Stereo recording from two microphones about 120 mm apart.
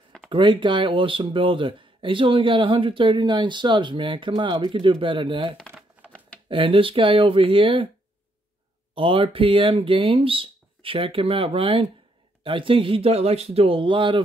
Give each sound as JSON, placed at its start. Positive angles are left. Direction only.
{"t": 0.3, "sound": "speech", "side_deg": -45}
{"t": 6.0, "sound": "a sound", "side_deg": -15}
{"t": 6.5, "sound": "speech", "side_deg": -50}
{"t": 8.9, "sound": "speech", "side_deg": -50}